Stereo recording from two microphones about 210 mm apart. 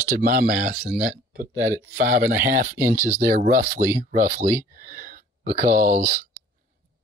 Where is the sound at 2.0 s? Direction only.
40° right (ahead or behind).